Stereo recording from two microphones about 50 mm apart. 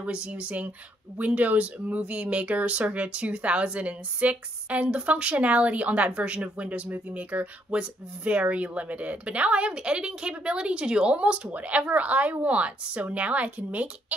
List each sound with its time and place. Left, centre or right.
0.0 s speech: right